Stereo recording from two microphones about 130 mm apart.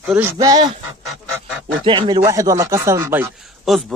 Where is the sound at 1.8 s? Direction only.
40° right (ahead or behind).